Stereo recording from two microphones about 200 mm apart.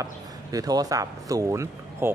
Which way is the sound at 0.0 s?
20° right (ahead or behind).